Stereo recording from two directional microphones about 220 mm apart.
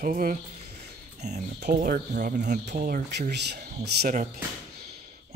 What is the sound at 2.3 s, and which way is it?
Speech, 50° right (ahead or behind).